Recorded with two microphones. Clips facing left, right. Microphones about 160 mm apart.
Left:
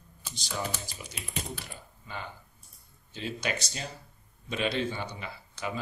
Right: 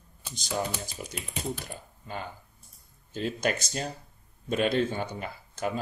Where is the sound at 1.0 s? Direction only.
45° right (ahead or behind).